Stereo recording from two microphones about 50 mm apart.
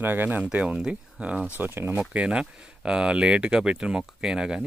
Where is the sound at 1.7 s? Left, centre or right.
Right.